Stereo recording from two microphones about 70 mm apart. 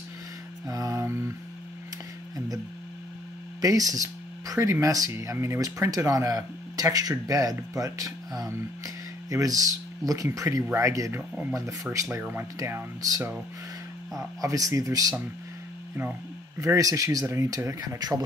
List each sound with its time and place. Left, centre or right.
0.7 s mantra: right
1.0 s music: right
2.3 s a sound: right
3.6 s speech: right
4.6 s a man's voice: right
5.6 s a man's voice: right
12.2 s speech: right
14.1 s speech: right
16.5 s a man's voice: right
17.3 s a man's voice: right
17.7 s speech: right